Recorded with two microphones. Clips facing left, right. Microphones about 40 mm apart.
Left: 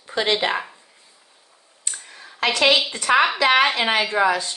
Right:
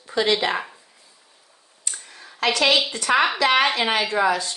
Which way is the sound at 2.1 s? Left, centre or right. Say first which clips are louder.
Even; left.